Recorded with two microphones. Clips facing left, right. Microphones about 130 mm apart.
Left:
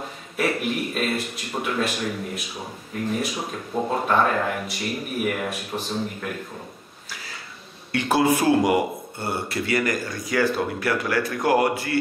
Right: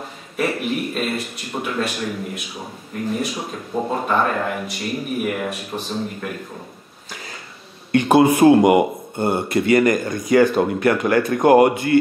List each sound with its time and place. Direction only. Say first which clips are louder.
0.4 s speech: right 2 dB; centre (ahead or behind)
8.1 s a man's voice: right 7 dB; 20° right (ahead or behind)